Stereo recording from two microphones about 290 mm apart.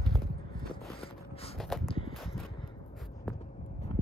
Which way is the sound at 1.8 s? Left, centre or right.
Centre.